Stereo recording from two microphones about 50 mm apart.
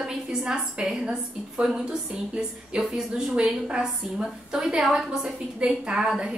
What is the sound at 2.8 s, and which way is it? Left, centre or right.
A woman's voice, centre.